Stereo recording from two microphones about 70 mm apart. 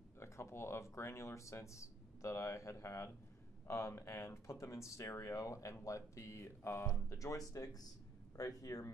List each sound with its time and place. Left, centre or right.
0.2 s speech: left